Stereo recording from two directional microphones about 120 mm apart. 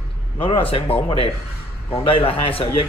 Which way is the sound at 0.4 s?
45° left (ahead or behind).